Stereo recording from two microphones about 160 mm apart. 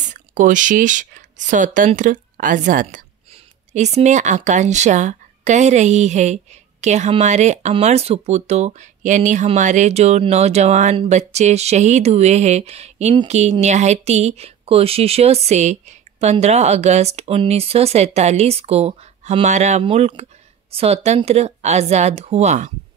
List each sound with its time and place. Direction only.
0.1 s speech: 50° right (ahead or behind)